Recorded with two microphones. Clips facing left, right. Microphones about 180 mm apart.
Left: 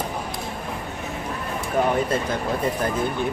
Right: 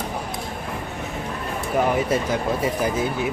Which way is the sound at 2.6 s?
5° right (ahead or behind).